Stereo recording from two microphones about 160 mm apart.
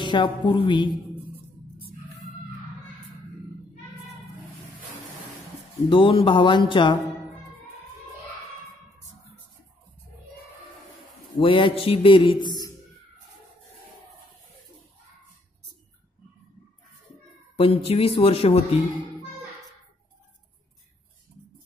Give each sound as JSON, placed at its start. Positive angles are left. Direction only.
{"t": 0.0, "sound": "a woman's voice", "side_deg": 30}
{"t": 5.9, "sound": "speech", "side_deg": 30}
{"t": 11.3, "sound": "speech", "side_deg": 30}
{"t": 17.6, "sound": "speech", "side_deg": 35}